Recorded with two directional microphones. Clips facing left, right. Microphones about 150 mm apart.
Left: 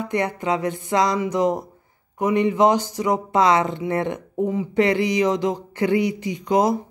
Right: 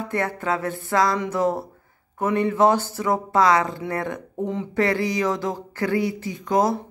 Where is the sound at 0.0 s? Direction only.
15° left (ahead or behind).